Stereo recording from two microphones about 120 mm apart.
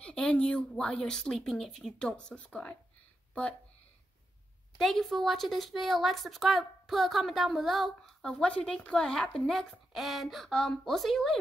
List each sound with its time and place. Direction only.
0.0 s speech: 10° left (ahead or behind)
4.7 s a woman's voice: centre (ahead or behind)